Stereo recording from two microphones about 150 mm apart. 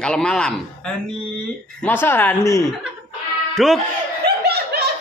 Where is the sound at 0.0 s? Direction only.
5° left (ahead or behind).